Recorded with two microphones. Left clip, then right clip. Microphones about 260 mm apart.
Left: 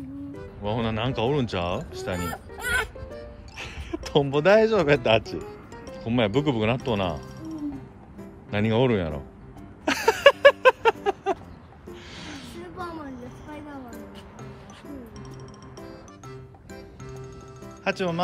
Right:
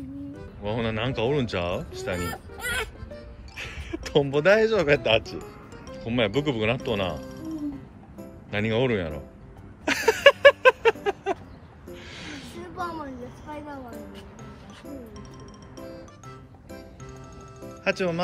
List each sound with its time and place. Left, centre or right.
0.6 s speech: centre
7.2 s music: centre
8.5 s speech: centre
9.8 s a sound: centre
11.9 s music: centre
12.8 s a sound: centre
17.6 s music: centre